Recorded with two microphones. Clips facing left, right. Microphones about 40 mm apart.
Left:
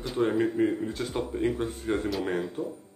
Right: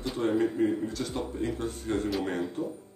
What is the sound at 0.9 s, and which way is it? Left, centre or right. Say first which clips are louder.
Speech: left 2 dB; left.